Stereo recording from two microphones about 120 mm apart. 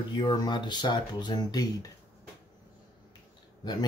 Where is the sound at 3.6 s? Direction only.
40° left (ahead or behind).